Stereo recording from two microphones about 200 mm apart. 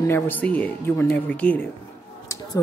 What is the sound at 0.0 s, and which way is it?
Speech, 10° left (ahead or behind).